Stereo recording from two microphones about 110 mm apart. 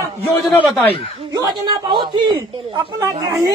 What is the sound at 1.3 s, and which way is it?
A man's voice, 45° right (ahead or behind).